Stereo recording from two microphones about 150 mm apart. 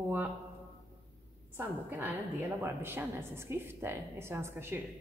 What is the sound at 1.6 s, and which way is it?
A woman's voice, 15° right (ahead or behind).